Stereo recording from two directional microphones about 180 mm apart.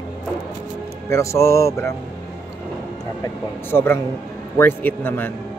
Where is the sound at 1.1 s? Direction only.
15° left (ahead or behind).